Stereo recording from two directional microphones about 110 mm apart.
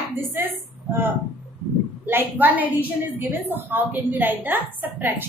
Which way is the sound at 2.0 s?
15° right (ahead or behind).